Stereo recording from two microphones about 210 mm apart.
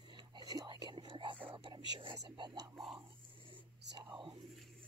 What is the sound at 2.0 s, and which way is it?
Speech, 25° right (ahead or behind).